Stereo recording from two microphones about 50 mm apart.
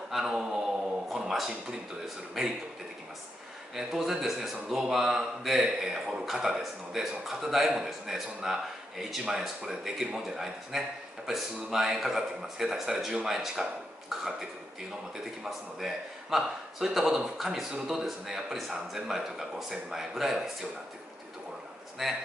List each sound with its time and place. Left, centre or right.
1.1 s a man's voice: centre
3.7 s a man's voice: centre
15.8 s a man's voice: centre
22.0 s a man's voice: centre